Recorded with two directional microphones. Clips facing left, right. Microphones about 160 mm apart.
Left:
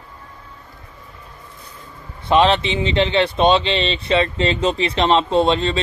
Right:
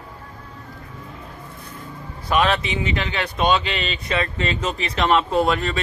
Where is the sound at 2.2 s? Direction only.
25° left (ahead or behind).